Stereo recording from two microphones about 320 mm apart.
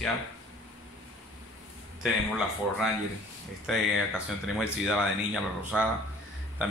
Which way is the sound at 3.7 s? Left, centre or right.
Centre.